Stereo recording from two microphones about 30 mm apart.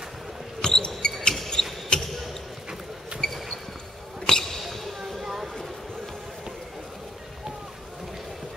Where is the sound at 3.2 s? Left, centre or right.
Left.